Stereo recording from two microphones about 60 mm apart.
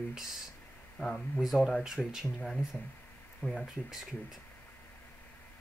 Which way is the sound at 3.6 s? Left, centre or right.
Centre.